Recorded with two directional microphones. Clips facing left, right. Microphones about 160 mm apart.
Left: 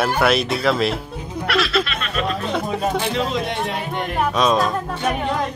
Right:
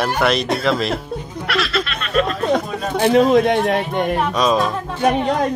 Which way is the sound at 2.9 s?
55° right (ahead or behind).